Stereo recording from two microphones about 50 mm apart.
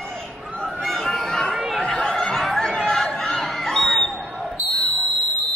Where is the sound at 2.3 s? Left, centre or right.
Centre.